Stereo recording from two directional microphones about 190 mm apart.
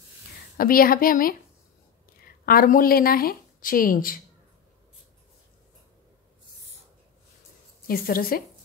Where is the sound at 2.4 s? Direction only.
45° left (ahead or behind).